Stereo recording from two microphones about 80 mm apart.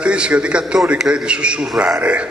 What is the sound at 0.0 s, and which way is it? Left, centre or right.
A man's voice, centre.